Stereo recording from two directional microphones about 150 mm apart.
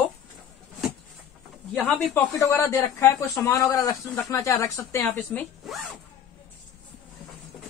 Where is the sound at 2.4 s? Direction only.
20° left (ahead or behind).